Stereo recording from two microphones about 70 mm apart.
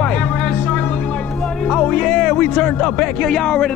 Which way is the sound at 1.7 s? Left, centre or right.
Centre.